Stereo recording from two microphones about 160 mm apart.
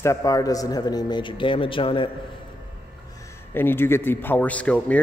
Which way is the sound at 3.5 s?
15° left (ahead or behind).